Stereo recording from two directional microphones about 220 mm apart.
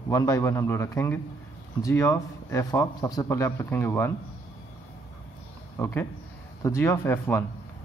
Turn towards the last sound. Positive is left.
turn(degrees=10)  # may be behind; listen again after turning